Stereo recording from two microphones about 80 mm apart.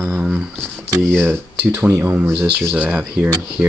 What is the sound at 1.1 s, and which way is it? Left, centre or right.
Speech, right.